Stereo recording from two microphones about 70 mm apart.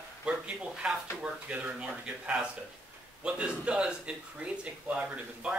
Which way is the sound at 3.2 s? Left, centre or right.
Centre.